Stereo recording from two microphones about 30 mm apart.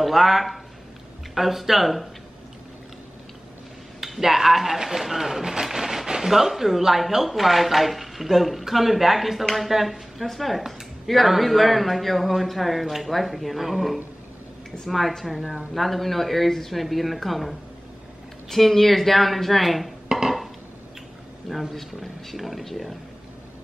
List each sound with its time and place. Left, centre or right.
0.0 s speech: centre
4.0 s speech: centre
20.1 s a sound: centre
21.5 s speech: centre